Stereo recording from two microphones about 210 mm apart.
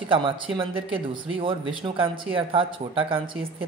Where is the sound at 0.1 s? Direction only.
25° right (ahead or behind).